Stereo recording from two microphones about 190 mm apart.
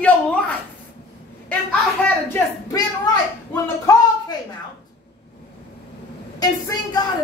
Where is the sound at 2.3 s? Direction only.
20° left (ahead or behind).